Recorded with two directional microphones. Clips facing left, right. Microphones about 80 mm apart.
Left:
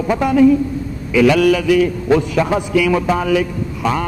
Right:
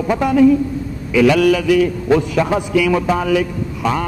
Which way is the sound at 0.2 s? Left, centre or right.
Centre.